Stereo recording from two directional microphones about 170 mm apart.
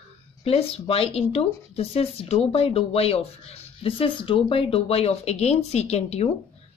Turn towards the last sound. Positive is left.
turn(degrees=40)  # may be behind; listen again after turning